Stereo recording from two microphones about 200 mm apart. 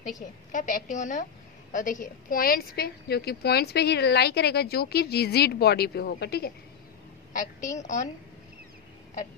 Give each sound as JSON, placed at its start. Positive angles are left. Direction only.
{"t": 0.5, "sound": "a woman's voice", "side_deg": 40}
{"t": 7.8, "sound": "a woman's voice", "side_deg": 40}